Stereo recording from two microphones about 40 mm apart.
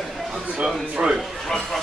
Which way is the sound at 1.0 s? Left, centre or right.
Right.